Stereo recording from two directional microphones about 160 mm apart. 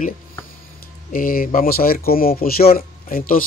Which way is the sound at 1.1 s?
60° left (ahead or behind).